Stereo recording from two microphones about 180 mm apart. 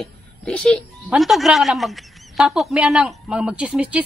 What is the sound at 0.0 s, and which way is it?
Speech, centre (ahead or behind).